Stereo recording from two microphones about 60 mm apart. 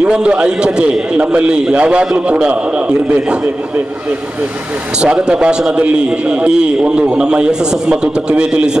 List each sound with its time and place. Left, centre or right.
0.0 s a man's voice: centre
5.0 s a man's voice: centre